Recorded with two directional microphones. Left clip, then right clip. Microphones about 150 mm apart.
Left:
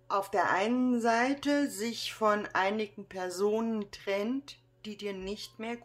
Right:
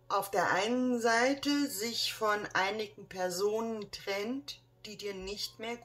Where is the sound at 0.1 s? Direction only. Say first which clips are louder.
Left 2 dB; 35° left (ahead or behind).